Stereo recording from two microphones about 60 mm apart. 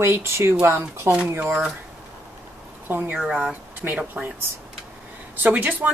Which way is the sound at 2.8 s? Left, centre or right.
Right.